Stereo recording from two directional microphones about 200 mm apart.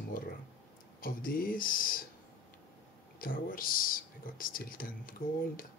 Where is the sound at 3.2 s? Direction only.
45° left (ahead or behind).